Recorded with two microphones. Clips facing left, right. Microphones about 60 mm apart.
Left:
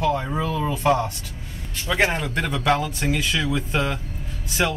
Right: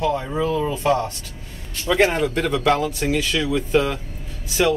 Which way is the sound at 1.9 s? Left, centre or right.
Centre.